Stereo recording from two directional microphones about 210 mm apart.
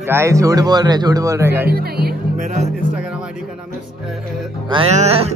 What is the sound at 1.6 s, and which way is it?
Speech, 45° right (ahead or behind).